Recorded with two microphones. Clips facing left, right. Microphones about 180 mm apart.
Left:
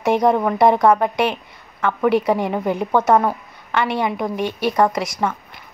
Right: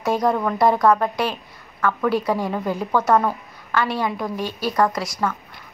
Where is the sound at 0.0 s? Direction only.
20° left (ahead or behind).